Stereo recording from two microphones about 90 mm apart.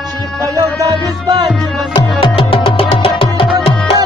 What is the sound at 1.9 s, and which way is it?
Music, 60° left (ahead or behind).